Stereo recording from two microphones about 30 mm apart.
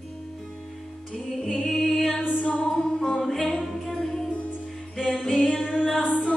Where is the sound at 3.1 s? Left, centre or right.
Centre.